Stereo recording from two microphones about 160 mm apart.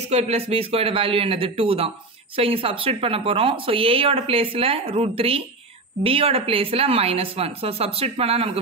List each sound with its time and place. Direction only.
0.1 s speech: 40° right (ahead or behind)